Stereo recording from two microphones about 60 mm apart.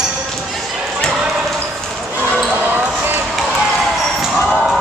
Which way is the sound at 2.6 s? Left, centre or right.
Right.